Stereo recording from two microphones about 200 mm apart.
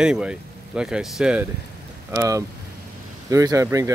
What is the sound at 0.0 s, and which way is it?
Speech, 5° right (ahead or behind).